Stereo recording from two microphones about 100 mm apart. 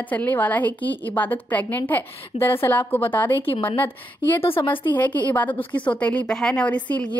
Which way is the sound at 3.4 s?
65° left (ahead or behind).